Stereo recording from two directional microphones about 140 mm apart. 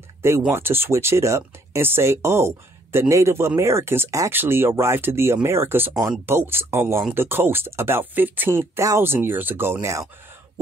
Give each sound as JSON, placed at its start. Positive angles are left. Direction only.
{"t": 0.5, "sound": "speech", "side_deg": -15}